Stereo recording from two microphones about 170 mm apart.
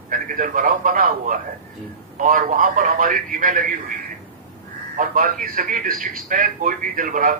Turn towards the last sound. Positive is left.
turn(degrees=-55)  # may be behind; listen again after turning